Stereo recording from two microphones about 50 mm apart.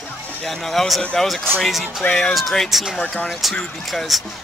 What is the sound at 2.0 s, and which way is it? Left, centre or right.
Speech, centre.